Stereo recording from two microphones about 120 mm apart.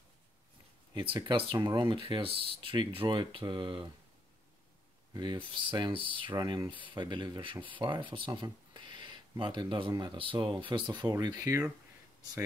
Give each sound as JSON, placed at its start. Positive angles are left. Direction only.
{"t": 0.9, "sound": "speech", "side_deg": -40}
{"t": 5.1, "sound": "speech", "side_deg": -35}